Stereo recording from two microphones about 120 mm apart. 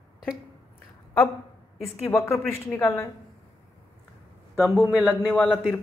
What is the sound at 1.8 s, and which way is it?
Speech, 25° left (ahead or behind).